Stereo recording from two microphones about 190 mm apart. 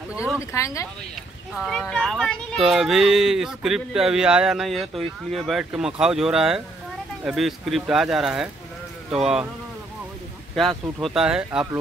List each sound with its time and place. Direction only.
0.4 s speech: 15° left (ahead or behind)
1.5 s speech: centre (ahead or behind)
10.5 s speech: centre (ahead or behind)